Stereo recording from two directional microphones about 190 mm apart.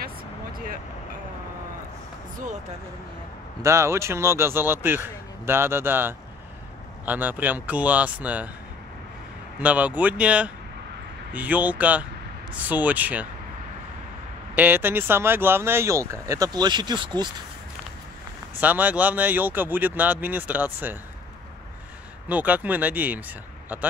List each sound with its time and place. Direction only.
0.0 s a sound: 50° right (ahead or behind)
2.3 s speech: 40° right (ahead or behind)
3.6 s speech: 15° right (ahead or behind)
9.6 s speech: 10° right (ahead or behind)
14.5 s speech: 10° right (ahead or behind)
18.6 s speech: 10° right (ahead or behind)
22.3 s speech: 10° right (ahead or behind)